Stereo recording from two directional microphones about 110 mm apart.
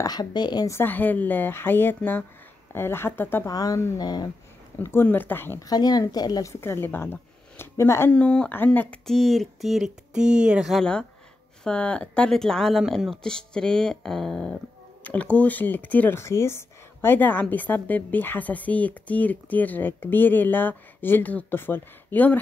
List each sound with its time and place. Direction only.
0.0 s speech: 40° left (ahead or behind)
0.7 s speech: 20° left (ahead or behind)
3.4 s speech: 30° left (ahead or behind)
5.0 s speech: 15° left (ahead or behind)
5.6 s speech: 35° left (ahead or behind)
6.5 s speech: 20° left (ahead or behind)
8.1 s speech: 10° left (ahead or behind)
11.6 s speech: 10° left (ahead or behind)